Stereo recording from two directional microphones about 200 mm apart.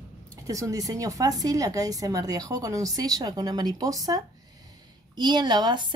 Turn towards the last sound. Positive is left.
turn(degrees=-20)  # may be behind; listen again after turning